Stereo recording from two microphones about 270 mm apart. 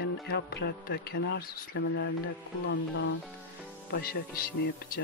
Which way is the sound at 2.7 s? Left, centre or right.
Left.